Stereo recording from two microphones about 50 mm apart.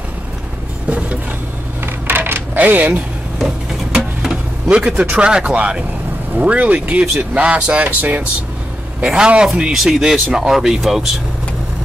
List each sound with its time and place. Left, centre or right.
0.8 s a sound: right
2.0 s coin: right
2.5 s speech: right
3.4 s a sound: centre
4.6 s speech: right
9.0 s speech: centre
9.7 s speech: centre